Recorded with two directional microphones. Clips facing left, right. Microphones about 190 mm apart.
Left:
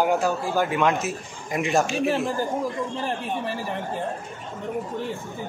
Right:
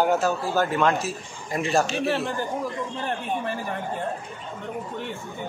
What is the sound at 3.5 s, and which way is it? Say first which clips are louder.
Speech: even; 30° left (ahead or behind).